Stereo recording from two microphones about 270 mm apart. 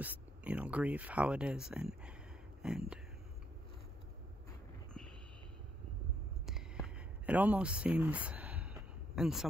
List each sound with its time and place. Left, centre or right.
0.0 s speech: centre
7.2 s speech: centre